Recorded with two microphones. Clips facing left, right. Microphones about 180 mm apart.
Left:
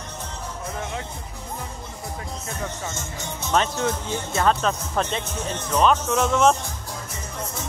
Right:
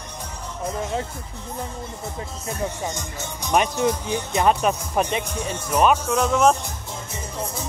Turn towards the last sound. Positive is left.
turn(degrees=-5)  # may be behind; listen again after turning